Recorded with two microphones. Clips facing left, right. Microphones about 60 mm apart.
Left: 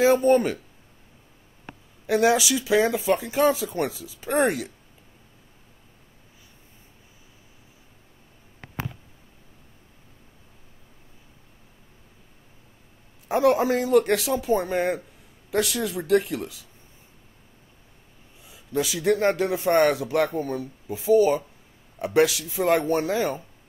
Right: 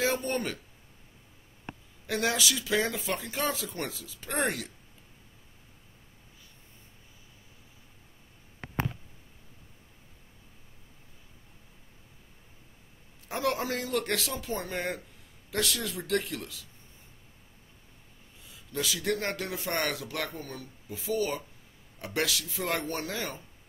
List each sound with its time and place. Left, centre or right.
0.0 s speech: centre
2.0 s speech: centre
13.3 s speech: centre
18.5 s speech: centre